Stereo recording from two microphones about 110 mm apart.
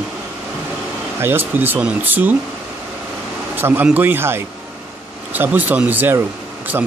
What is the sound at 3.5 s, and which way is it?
Speech, 20° right (ahead or behind).